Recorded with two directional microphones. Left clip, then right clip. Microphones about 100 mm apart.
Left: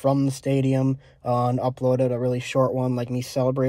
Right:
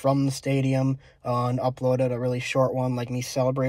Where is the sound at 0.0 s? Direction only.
35° left (ahead or behind).